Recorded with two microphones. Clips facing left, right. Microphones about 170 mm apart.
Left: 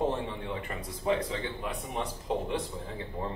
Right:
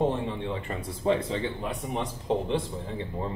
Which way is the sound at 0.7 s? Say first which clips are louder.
Right 3 dB; 30° right (ahead or behind).